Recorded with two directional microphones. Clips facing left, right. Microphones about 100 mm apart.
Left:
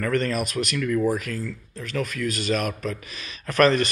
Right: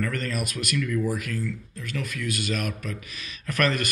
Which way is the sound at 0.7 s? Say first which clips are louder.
Left 3 dB; 55° left (ahead or behind).